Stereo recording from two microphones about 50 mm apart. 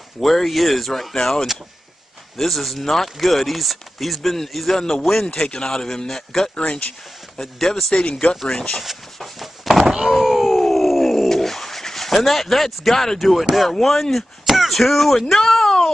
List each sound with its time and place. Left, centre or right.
0.2 s speech: centre
7.9 s speech: centre
8.5 s speech: centre
8.8 s speech: centre